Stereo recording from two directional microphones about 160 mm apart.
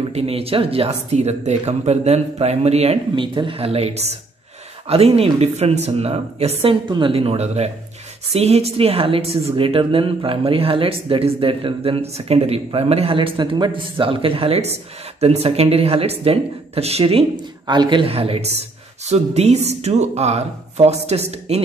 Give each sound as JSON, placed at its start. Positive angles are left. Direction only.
{"t": 0.1, "sound": "a woman's voice", "side_deg": -40}